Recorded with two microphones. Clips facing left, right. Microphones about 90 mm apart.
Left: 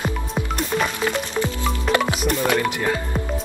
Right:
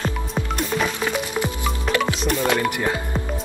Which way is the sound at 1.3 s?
15° right (ahead or behind).